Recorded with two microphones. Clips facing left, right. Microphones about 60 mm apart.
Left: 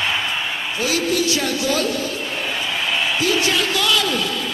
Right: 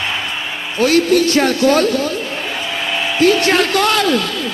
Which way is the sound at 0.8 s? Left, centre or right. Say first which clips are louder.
Right 9 dB; right.